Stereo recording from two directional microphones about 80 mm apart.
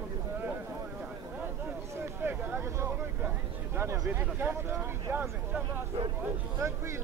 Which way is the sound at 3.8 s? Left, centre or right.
Right.